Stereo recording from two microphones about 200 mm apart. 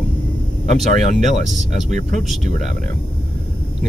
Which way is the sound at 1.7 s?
40° right (ahead or behind).